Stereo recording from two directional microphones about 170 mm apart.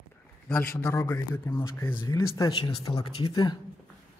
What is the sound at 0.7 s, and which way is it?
Speech, 10° left (ahead or behind).